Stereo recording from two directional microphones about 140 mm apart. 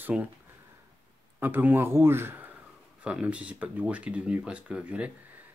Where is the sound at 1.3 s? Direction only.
15° right (ahead or behind).